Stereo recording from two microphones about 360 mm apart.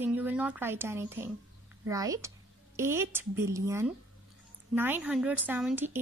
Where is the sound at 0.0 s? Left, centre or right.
Centre.